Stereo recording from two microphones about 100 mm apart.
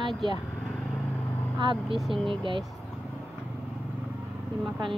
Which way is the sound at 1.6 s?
55° right (ahead or behind).